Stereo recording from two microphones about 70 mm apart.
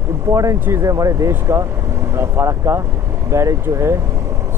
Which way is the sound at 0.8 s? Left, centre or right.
Right.